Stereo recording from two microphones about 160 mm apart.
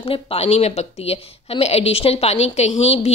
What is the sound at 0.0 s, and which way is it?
A woman's voice, 35° left (ahead or behind).